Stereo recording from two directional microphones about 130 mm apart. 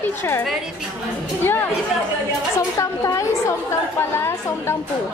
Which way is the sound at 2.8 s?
25° left (ahead or behind).